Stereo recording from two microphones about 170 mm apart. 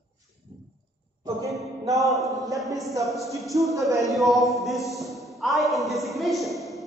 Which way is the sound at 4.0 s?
Centre (ahead or behind).